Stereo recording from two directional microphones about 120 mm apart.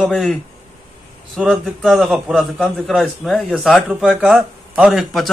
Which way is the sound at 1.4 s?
Centre (ahead or behind).